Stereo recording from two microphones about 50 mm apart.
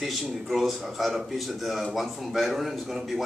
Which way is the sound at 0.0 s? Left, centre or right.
Centre.